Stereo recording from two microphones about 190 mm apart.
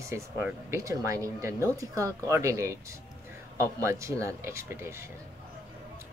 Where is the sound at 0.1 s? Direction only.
15° right (ahead or behind).